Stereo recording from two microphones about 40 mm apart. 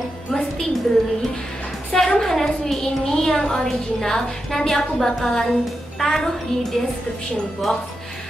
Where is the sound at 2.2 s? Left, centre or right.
Centre.